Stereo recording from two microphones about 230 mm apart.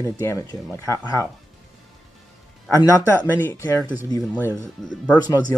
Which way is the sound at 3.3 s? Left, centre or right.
Centre.